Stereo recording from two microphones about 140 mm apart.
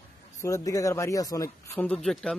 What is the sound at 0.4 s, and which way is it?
Speech, 25° left (ahead or behind).